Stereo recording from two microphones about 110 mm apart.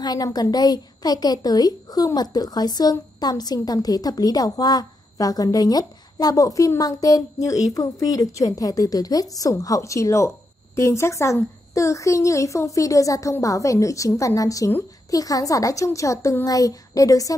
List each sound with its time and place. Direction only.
0.0 s a woman's voice: 35° left (ahead or behind)